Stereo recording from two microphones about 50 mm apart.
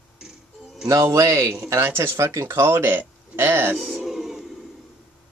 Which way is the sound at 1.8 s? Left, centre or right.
Right.